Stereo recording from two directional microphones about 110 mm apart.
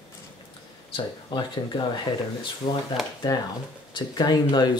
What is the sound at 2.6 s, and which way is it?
Speech, 60° left (ahead or behind).